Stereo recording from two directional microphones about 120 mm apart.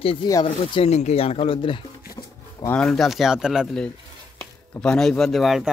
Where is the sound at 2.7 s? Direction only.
5° left (ahead or behind).